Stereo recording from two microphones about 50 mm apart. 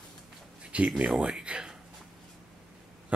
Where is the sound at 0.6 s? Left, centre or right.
Right.